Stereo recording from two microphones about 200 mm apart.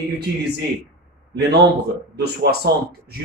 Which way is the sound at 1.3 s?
55° right (ahead or behind).